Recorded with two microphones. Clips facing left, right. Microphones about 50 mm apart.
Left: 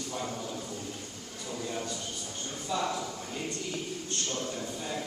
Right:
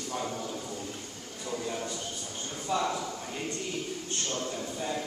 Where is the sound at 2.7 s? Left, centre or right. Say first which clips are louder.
Right 2 dB; right.